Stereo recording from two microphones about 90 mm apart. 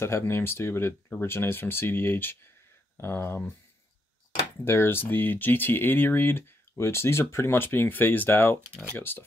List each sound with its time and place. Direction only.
0.0 s speech: 30° left (ahead or behind)
4.6 s speech: 25° left (ahead or behind)